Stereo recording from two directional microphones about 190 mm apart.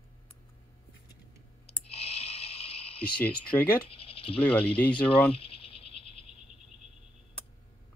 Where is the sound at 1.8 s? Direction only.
30° left (ahead or behind).